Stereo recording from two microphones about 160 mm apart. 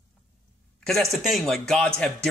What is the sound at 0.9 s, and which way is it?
Speech, centre (ahead or behind).